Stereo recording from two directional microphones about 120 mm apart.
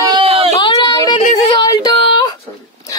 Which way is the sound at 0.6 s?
40° left (ahead or behind).